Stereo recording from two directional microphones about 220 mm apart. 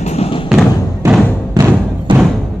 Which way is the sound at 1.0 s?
5° right (ahead or behind).